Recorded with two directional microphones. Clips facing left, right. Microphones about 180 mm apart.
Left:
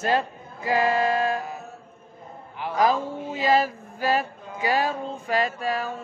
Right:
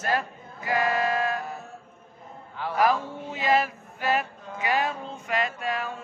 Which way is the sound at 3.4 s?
30° left (ahead or behind).